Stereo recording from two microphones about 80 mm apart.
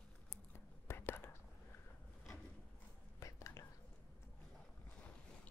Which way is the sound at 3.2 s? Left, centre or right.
Left.